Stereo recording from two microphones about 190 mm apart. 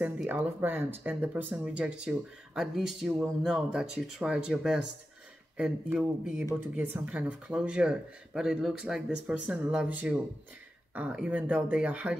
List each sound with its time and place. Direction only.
0.0 s speech: 10° right (ahead or behind)